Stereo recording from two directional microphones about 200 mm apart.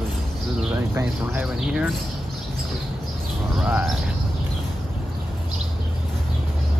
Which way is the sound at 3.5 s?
5° right (ahead or behind).